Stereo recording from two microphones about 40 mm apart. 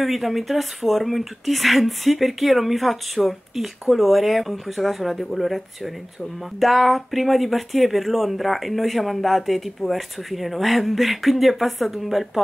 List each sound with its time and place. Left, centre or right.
0.0 s speech: centre
6.6 s speech: centre